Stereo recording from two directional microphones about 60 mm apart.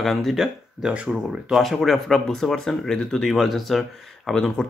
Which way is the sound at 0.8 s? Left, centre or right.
Centre.